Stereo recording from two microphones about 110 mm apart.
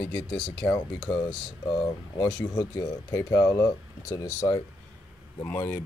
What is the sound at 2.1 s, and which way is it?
Speech, 35° left (ahead or behind).